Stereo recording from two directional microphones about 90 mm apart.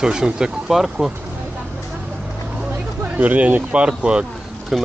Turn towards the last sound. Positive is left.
turn(degrees=-5)  # may be behind; listen again after turning